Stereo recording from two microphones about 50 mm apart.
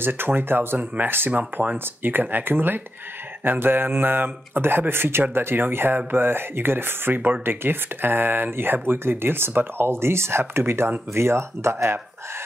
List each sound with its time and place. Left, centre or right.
0.0 s speech: right